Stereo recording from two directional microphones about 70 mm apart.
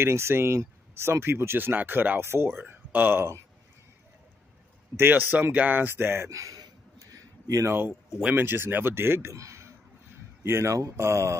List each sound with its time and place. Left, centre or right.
0.0 s speech: right
4.9 s speech: right
6.3 s speech: right
7.0 s a sound: right
7.6 s speech: right
9.3 s speech: right